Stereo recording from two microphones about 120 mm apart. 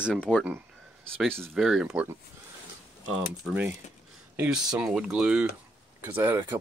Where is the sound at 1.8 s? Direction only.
15° right (ahead or behind).